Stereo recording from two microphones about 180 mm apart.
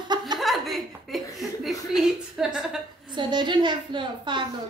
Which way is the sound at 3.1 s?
25° right (ahead or behind).